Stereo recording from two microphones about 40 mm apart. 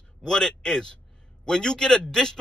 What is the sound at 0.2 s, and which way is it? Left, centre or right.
Speech, centre.